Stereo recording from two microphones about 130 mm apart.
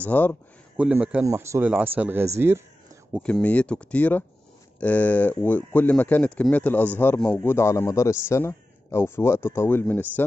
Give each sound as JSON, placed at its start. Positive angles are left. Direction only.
{"t": 0.0, "sound": "speech", "side_deg": 15}
{"t": 0.7, "sound": "speech", "side_deg": -10}
{"t": 1.2, "sound": "speech", "side_deg": -20}
{"t": 3.2, "sound": "speech", "side_deg": 10}